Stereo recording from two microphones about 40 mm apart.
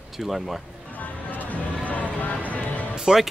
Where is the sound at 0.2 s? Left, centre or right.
Centre.